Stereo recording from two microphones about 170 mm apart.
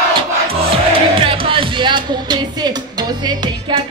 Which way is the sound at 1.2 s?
30° right (ahead or behind).